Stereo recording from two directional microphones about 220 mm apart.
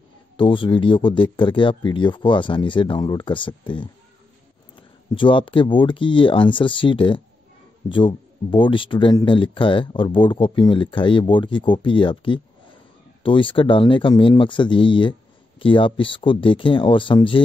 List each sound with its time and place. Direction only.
0.4 s speech: 20° left (ahead or behind)